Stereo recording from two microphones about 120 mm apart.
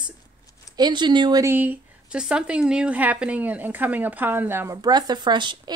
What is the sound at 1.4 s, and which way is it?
A woman's voice, 15° right (ahead or behind).